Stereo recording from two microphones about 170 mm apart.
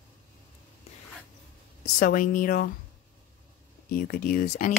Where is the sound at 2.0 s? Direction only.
55° left (ahead or behind).